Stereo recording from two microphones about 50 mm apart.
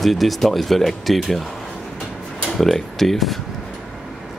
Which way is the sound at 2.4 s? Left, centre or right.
Centre.